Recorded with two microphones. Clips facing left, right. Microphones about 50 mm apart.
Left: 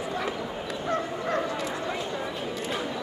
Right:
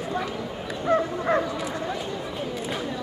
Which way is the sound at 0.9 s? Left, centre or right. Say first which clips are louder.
Right 7 dB; right.